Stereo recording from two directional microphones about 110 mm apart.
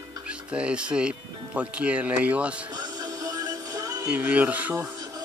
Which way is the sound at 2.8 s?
35° right (ahead or behind).